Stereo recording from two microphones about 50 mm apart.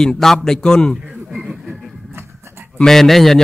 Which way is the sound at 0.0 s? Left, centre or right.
Centre.